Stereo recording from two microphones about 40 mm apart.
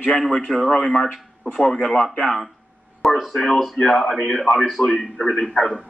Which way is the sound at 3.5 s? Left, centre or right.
Centre.